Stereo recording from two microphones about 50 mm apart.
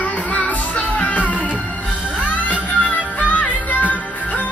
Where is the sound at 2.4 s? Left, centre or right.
Left.